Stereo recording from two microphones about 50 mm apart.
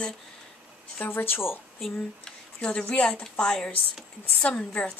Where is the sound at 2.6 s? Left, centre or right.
Left.